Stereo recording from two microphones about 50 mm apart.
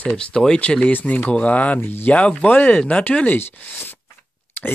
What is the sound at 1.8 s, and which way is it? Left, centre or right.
Speech, left.